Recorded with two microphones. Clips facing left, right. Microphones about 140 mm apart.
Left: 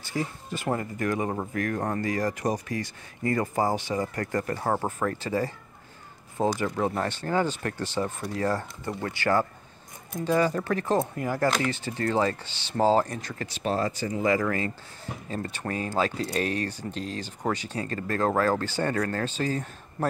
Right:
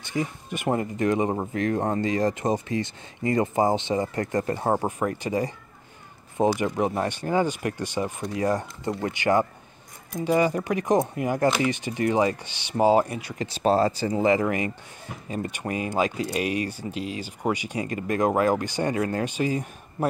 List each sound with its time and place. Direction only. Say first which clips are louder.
0.0 s speech: right 2 dB; 20° right (ahead or behind)
6.5 s speech: right 2 dB; 20° right (ahead or behind)
13.5 s speech: right 7 dB; 35° right (ahead or behind); by 20.1 s 15° right (ahead or behind)